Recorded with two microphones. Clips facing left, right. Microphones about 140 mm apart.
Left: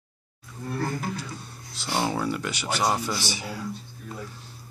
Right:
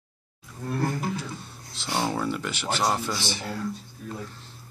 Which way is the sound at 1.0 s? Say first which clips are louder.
Right 2 dB; centre (ahead or behind).